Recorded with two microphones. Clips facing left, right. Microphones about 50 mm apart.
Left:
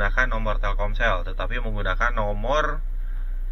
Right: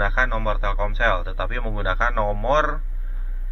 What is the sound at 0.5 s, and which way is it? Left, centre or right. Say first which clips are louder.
Speech: right 3 dB; centre.